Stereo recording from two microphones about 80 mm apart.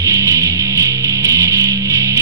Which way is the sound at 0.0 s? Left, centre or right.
Right.